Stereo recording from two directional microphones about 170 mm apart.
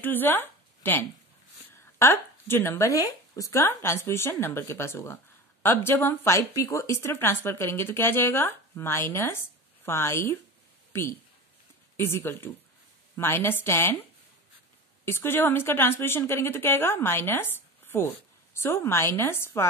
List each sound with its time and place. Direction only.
0.0 s speech: 10° left (ahead or behind)
15.0 s speech: 15° left (ahead or behind)